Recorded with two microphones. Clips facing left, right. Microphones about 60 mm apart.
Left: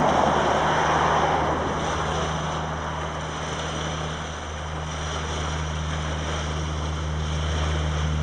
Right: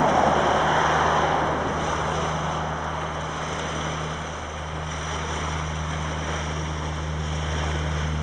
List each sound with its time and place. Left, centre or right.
0.0 s vehicle: centre
2.0 s vehicle: centre